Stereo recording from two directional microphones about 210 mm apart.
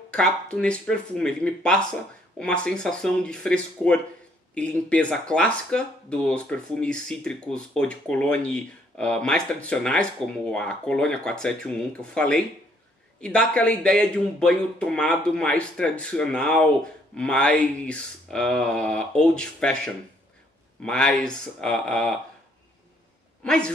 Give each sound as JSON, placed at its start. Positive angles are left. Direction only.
{"t": 0.1, "sound": "speech", "side_deg": 5}
{"t": 23.4, "sound": "speech", "side_deg": 5}